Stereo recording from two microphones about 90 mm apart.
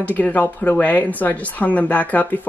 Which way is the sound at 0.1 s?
20° left (ahead or behind).